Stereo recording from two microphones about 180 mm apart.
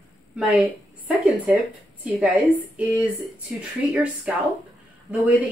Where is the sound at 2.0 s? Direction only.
10° right (ahead or behind).